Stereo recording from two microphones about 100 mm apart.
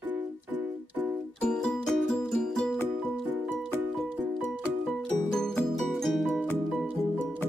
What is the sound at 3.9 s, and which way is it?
Music, 5° left (ahead or behind).